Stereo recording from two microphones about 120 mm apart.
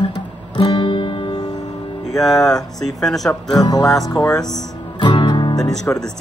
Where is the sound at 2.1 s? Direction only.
Centre (ahead or behind).